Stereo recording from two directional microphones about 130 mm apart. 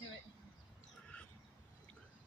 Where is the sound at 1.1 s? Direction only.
10° left (ahead or behind).